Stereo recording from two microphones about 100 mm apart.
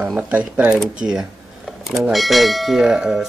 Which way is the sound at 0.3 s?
15° right (ahead or behind).